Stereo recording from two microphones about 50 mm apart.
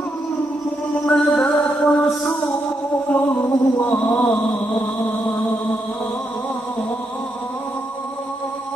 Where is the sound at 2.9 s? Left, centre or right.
Left.